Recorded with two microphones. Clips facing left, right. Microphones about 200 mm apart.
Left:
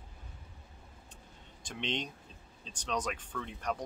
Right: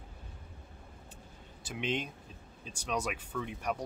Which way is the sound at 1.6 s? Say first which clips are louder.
Right 2 dB; 5° right (ahead or behind).